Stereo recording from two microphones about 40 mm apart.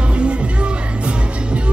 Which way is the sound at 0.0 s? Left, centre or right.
Right.